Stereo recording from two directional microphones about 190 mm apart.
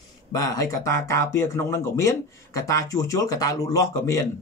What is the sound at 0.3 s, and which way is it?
Speech, 20° left (ahead or behind).